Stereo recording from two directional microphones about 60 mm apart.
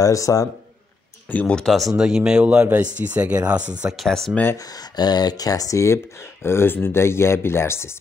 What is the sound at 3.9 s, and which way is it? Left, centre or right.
Speech, centre.